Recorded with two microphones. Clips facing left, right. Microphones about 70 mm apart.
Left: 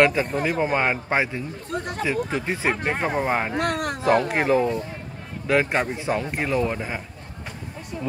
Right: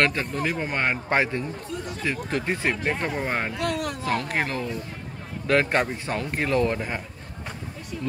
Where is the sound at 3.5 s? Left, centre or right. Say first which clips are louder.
Left 3 dB; left.